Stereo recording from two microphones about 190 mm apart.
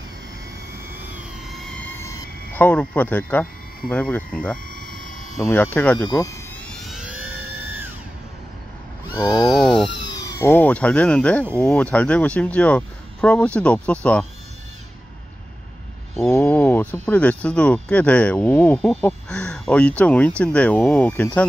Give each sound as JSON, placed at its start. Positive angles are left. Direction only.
{"t": 1.6, "sound": "a sound", "side_deg": 5}
{"t": 4.7, "sound": "a sound", "side_deg": 45}
{"t": 5.4, "sound": "speech", "side_deg": 10}
{"t": 6.0, "sound": "speech", "side_deg": 20}
{"t": 6.7, "sound": "vehicle", "side_deg": 0}
{"t": 9.1, "sound": "speech", "side_deg": 20}
{"t": 16.3, "sound": "speech", "side_deg": 10}